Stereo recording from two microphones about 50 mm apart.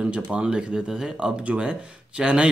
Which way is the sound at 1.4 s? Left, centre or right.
Right.